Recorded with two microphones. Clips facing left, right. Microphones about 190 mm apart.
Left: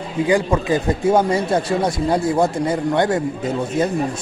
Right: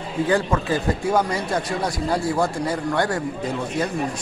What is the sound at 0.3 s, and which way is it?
Speech, 15° left (ahead or behind).